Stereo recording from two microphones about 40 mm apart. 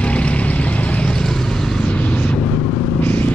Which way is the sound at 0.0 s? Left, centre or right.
Left.